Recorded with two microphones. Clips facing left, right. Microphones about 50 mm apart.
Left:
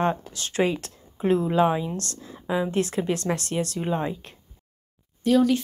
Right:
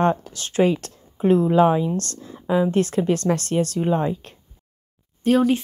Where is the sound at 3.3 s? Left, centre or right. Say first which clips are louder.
Right 5 dB; right.